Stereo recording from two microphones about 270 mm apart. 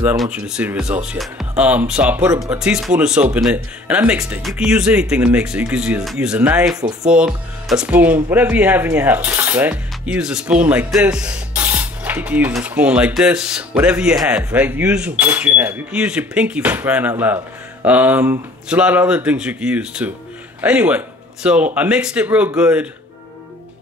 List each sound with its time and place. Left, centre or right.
0.5 s speech: centre